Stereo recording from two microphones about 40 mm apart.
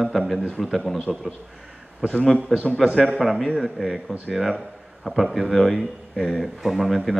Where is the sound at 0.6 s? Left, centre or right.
Centre.